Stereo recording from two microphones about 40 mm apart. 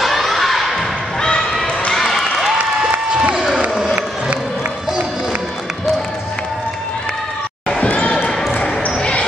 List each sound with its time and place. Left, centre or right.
0.0 s thump: centre
1.9 s a sound: centre
2.4 s applause: centre
7.8 s basketball bounce: left